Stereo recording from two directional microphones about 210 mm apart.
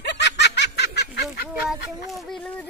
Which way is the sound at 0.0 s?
55° left (ahead or behind).